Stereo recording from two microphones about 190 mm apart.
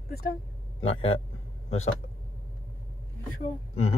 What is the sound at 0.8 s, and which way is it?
Speech, 30° left (ahead or behind).